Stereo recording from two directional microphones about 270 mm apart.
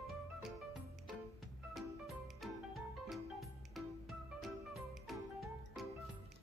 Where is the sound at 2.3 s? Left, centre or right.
Centre.